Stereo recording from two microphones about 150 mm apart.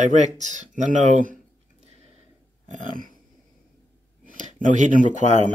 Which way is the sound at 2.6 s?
65° right (ahead or behind).